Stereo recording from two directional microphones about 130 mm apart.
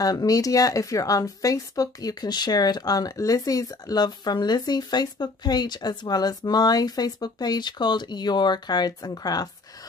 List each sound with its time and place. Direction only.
0.0 s a woman's voice: 30° left (ahead or behind)